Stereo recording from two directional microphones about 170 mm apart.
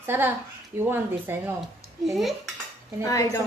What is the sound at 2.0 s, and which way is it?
Speech, centre (ahead or behind).